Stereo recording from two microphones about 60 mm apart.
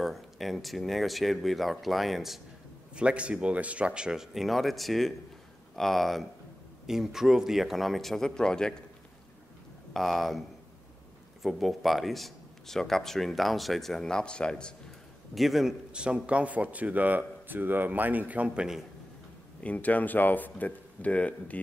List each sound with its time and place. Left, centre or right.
0.0 s speech: centre
3.0 s speech: centre
9.9 s speech: centre
11.4 s speech: centre
15.3 s speech: centre
15.9 s speech: centre
19.6 s speech: left